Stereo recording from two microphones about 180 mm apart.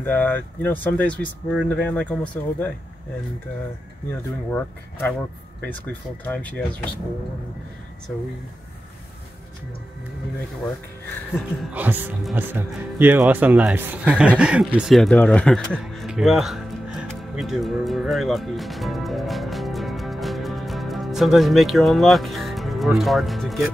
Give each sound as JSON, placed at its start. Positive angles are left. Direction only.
{"t": 0.0, "sound": "speech", "side_deg": 10}
{"t": 4.1, "sound": "speech", "side_deg": 10}
{"t": 11.3, "sound": "speech", "side_deg": -10}